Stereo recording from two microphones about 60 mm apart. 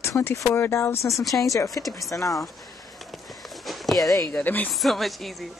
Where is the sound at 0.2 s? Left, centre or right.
Left.